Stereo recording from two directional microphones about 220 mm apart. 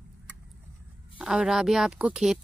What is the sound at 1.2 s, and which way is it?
Speech, 5° right (ahead or behind).